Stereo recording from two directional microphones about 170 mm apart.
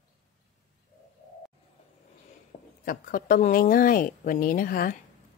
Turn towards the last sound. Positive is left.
turn(degrees=55)  # may be behind; listen again after turning